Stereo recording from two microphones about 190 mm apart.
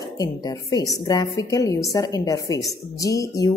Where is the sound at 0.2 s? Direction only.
20° left (ahead or behind).